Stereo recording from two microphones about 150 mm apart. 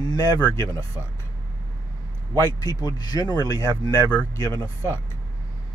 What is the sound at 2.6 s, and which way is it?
Speech, 25° left (ahead or behind).